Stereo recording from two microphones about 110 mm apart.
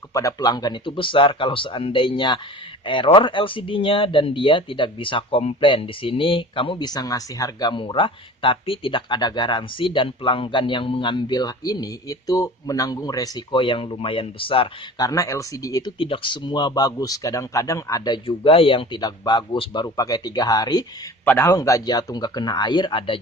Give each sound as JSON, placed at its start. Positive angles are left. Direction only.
{"t": 0.1, "sound": "speech", "side_deg": 30}
{"t": 7.7, "sound": "speech", "side_deg": 50}
{"t": 13.5, "sound": "speech", "side_deg": 50}
{"t": 15.0, "sound": "speech", "side_deg": 30}
{"t": 16.0, "sound": "speech", "side_deg": 50}
{"t": 21.3, "sound": "speech", "side_deg": 25}